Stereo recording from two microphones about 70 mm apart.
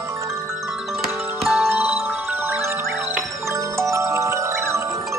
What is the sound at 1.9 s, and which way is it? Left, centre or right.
Music, right.